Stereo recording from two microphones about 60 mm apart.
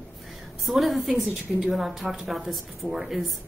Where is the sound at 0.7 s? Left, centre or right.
Centre.